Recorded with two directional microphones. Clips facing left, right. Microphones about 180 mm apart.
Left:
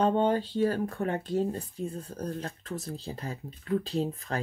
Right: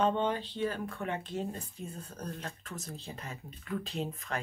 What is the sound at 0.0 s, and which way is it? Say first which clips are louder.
Speech: left 5 dB; 40° left (ahead or behind).